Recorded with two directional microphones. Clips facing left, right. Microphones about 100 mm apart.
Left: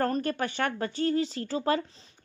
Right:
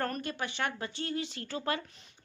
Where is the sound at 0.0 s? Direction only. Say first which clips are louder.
Left 7 dB; 40° left (ahead or behind).